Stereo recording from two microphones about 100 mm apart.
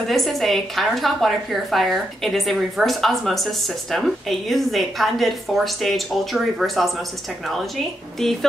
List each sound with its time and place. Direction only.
0.0 s a woman's voice: centre (ahead or behind)